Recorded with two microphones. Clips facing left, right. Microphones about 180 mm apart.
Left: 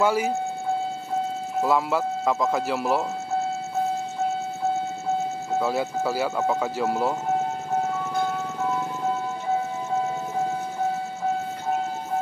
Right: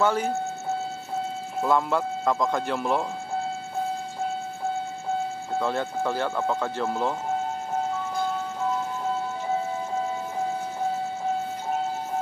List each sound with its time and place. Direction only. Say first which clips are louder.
0.0 s speech: left 2 dB; 10° left (ahead or behind)
1.6 s speech: left 1 dB; 5° left (ahead or behind)
5.6 s speech: left 1 dB; 5° left (ahead or behind)